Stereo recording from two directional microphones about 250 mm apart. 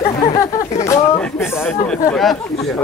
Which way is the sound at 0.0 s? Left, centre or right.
Left.